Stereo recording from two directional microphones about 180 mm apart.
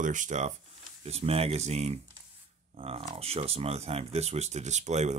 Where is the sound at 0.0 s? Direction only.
45° right (ahead or behind).